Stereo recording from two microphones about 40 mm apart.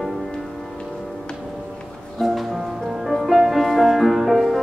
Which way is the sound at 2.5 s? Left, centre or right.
Centre.